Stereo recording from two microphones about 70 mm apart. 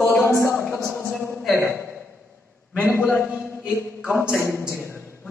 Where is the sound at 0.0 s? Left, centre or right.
Centre.